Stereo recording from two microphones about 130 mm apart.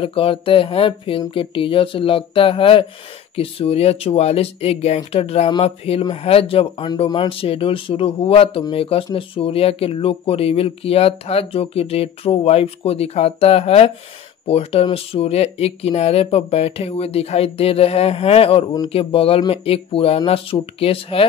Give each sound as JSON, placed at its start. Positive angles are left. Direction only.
{"t": 0.0, "sound": "speech", "side_deg": 45}